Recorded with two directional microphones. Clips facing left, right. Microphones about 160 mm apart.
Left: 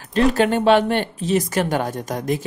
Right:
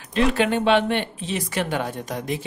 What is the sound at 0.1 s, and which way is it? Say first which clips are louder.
Speech: left 3 dB; 40° left (ahead or behind).